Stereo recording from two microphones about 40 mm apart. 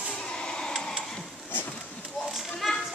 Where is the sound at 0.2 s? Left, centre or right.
Centre.